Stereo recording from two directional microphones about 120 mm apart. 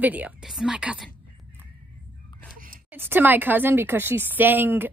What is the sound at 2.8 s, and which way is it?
A woman's voice, 15° right (ahead or behind).